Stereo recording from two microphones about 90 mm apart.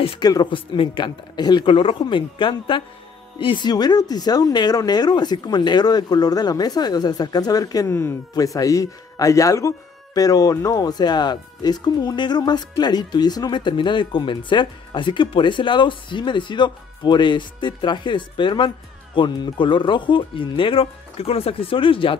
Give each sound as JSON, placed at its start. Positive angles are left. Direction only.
{"t": 0.2, "sound": "speech", "side_deg": 50}
{"t": 0.7, "sound": "speech", "side_deg": 65}